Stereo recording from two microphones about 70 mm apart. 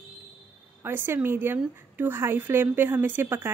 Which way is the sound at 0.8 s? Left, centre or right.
Right.